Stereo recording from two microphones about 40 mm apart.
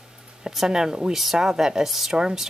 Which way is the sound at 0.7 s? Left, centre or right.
Centre.